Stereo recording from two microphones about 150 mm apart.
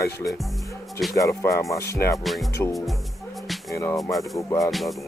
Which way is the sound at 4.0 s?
Centre (ahead or behind).